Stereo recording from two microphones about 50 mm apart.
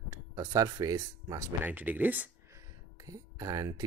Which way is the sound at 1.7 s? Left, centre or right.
Right.